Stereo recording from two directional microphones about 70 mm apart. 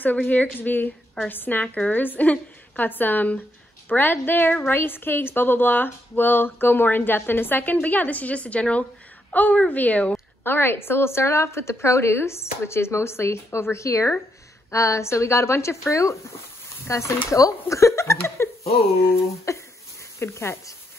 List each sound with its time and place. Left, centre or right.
0.3 s a woman's voice: left